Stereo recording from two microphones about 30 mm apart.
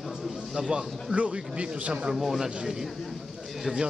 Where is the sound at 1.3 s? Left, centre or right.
Right.